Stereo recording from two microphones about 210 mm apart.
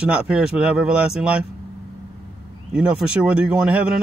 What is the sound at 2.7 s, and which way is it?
Speech, 5° right (ahead or behind).